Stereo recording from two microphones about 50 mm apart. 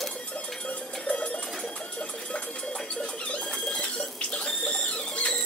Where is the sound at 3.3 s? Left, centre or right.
Left.